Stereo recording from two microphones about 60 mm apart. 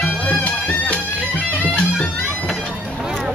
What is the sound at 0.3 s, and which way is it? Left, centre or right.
Music, left.